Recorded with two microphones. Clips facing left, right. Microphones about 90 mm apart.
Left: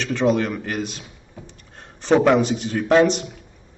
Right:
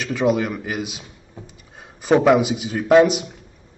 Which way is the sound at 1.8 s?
5° right (ahead or behind).